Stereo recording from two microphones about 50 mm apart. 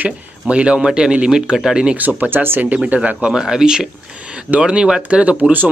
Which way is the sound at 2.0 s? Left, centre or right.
Right.